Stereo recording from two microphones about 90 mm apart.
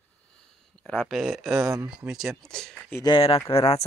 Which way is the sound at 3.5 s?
75° left (ahead or behind).